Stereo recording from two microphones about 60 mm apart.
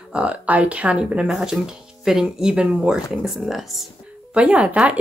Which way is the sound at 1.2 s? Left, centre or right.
Centre.